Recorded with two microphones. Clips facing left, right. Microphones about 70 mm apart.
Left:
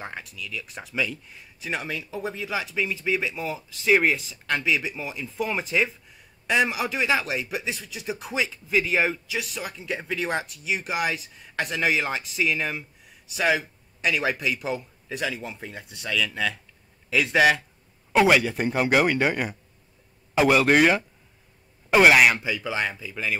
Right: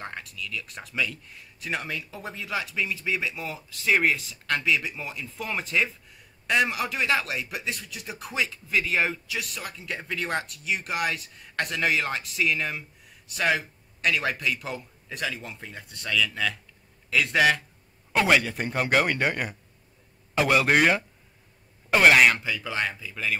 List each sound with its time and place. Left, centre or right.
0.0 s a man's voice: centre